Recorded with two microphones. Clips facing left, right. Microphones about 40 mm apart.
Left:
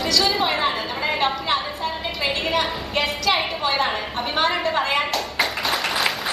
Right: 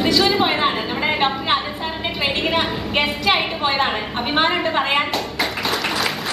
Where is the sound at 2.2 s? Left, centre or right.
Right.